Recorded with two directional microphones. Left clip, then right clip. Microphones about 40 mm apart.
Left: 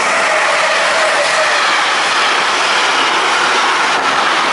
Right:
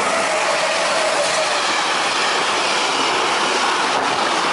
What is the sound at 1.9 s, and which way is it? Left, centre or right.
Vehicle, left.